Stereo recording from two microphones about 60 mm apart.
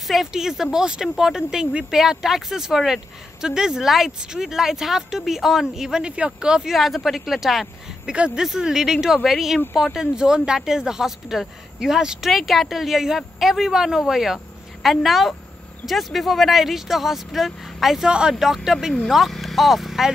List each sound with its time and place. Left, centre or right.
0.1 s speech: centre
8.1 s a woman's voice: centre